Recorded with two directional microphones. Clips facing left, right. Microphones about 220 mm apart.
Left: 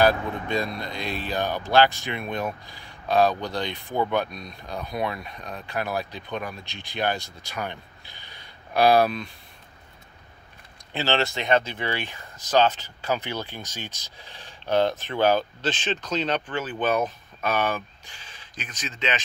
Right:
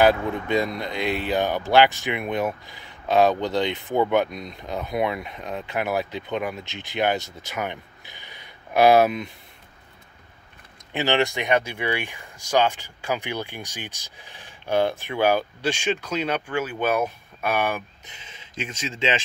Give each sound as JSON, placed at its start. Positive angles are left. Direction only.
{"t": 0.0, "sound": "speech", "side_deg": -15}
{"t": 10.9, "sound": "speech", "side_deg": -15}